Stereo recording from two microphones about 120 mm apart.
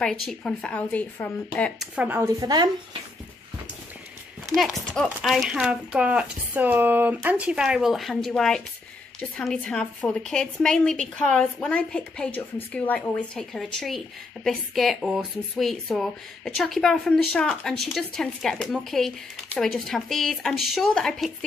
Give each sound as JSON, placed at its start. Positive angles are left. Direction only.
{"t": 0.0, "sound": "a woman's voice", "side_deg": 5}
{"t": 1.8, "sound": "speech", "side_deg": -10}
{"t": 2.2, "sound": "speech", "side_deg": -35}
{"t": 4.6, "sound": "a woman's voice", "side_deg": 0}